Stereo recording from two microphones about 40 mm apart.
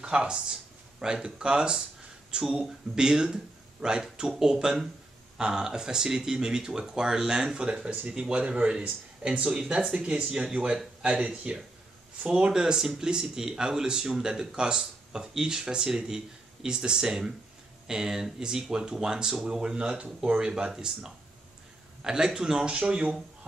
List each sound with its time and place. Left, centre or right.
0.0 s speech: right
11.5 s speech: right